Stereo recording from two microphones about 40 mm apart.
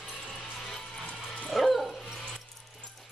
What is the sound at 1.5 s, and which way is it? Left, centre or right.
Bow-wow, centre.